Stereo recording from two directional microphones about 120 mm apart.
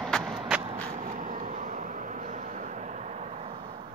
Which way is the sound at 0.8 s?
75° right (ahead or behind).